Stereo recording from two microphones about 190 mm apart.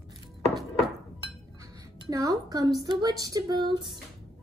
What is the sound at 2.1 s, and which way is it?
Speech, 20° right (ahead or behind).